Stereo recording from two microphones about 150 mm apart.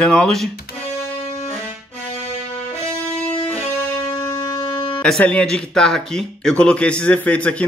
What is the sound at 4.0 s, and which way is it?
Music, 30° left (ahead or behind).